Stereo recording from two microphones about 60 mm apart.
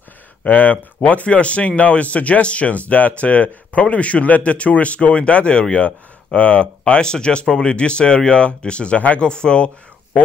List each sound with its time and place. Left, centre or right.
0.4 s speech: left